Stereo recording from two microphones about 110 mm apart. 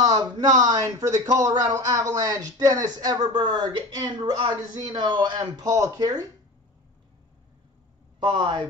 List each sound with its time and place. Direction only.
0.0 s speech: 35° right (ahead or behind)
8.2 s speech: 45° right (ahead or behind)